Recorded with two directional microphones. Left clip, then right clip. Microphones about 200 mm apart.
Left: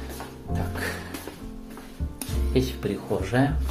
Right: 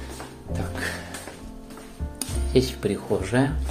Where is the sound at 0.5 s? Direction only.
10° right (ahead or behind).